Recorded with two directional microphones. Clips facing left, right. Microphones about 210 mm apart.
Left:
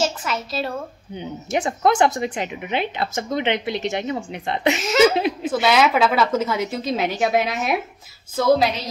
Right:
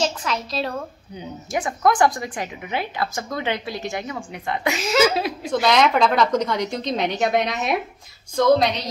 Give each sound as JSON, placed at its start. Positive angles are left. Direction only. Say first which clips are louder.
{"t": 0.0, "sound": "speech", "louder": "even", "side_deg": 5}
{"t": 1.1, "sound": "speech", "louder": "left 3 dB", "side_deg": 25}
{"t": 5.5, "sound": "speech", "louder": "right 1 dB", "side_deg": 5}